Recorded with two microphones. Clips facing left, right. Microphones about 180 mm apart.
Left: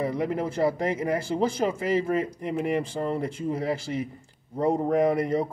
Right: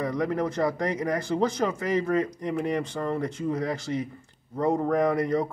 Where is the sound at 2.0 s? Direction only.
25° left (ahead or behind).